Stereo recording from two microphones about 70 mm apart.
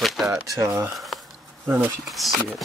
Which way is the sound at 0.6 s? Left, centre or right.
Right.